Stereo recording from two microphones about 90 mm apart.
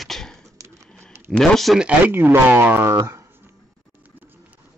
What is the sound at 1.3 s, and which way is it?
Speech, 5° left (ahead or behind).